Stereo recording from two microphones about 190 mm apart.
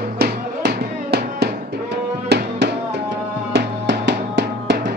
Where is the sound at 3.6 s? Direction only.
65° right (ahead or behind).